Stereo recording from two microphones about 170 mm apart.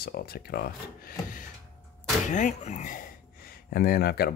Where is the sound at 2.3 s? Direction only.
45° left (ahead or behind); by 4.3 s 65° left (ahead or behind).